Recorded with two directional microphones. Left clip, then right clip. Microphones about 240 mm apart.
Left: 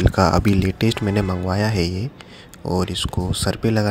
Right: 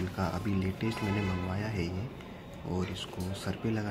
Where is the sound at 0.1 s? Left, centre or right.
Left.